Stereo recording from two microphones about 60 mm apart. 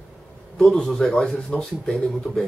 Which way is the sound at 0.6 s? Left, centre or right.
Centre.